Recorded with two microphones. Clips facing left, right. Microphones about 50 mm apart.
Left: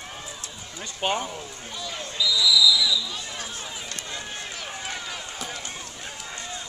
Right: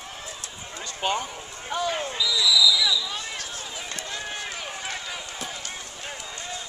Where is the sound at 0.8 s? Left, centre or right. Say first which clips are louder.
Even; centre.